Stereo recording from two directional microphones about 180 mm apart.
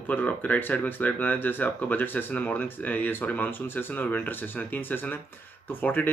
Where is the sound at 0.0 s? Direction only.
10° left (ahead or behind).